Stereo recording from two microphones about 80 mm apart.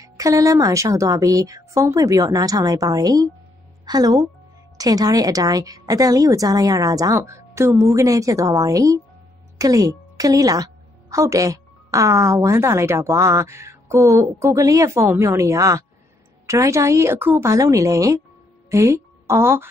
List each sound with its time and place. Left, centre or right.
0.0 s a woman's voice: right
17.5 s a woman's voice: right